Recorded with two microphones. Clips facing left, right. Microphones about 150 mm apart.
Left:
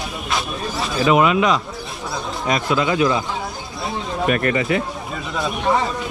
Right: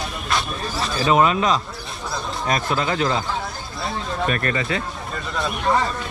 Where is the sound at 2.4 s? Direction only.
20° left (ahead or behind).